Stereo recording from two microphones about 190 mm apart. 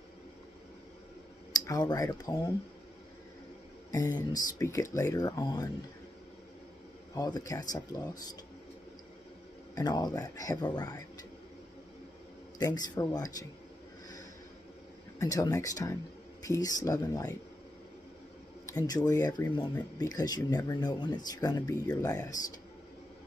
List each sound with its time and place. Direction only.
1.5 s speech: 20° left (ahead or behind)
4.3 s speech: 15° left (ahead or behind)
7.2 s speech: 20° left (ahead or behind)
9.8 s speech: 20° left (ahead or behind)
12.5 s speech: 20° left (ahead or behind)
15.1 s speech: 20° left (ahead or behind)
18.9 s speech: 20° left (ahead or behind)